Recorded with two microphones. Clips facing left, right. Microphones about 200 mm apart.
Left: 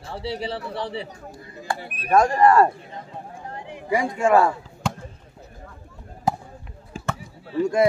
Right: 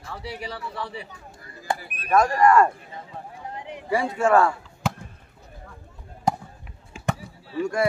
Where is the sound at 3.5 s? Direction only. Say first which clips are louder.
Right 1 dB; 20° right (ahead or behind).